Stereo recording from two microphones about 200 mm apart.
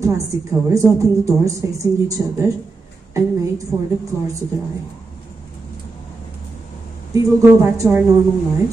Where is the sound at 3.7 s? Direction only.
5° right (ahead or behind).